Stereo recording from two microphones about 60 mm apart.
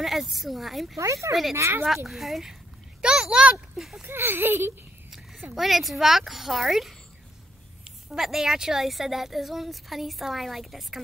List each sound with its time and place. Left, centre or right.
0.0 s a woman's voice: centre
0.9 s speech: right
1.5 s speech: right
2.0 s a woman's voice: centre
3.0 s a sound: centre
3.7 s speech: centre
4.0 s speech: right
5.5 s a woman's voice: centre